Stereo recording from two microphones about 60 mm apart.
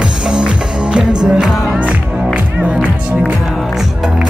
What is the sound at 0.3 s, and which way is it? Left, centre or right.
Music, centre.